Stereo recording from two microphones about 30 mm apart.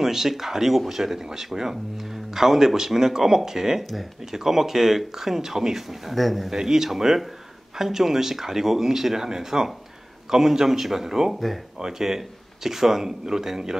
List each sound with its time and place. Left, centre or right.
0.0 s speech: centre
6.1 s speech: centre
6.5 s speech: centre